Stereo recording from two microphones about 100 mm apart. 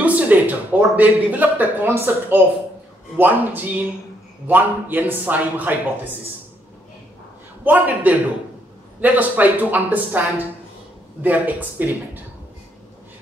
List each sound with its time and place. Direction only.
0.0 s speech: 15° right (ahead or behind)
7.6 s speech: 15° right (ahead or behind)